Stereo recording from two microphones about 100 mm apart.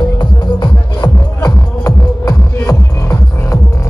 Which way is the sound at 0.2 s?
50° left (ahead or behind).